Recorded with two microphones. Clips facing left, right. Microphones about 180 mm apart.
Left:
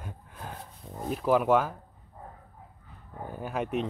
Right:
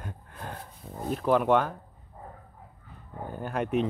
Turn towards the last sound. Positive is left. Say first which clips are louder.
# right 3 dB
turn(degrees=0)  # may be behind; listen again after turning